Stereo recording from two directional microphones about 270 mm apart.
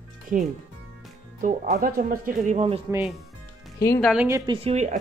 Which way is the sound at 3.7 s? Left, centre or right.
Centre.